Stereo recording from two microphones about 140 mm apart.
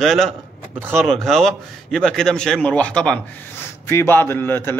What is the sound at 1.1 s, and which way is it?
A man's voice, centre (ahead or behind).